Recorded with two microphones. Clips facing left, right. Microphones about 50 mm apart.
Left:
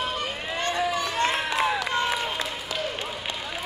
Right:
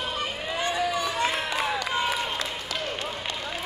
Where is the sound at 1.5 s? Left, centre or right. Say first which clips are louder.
Left 2 dB; centre.